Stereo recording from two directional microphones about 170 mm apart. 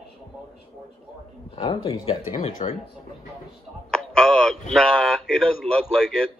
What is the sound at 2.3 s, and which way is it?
Speech, 45° left (ahead or behind).